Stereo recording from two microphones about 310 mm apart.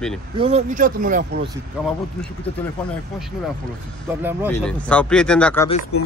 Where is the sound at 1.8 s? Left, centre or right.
Centre.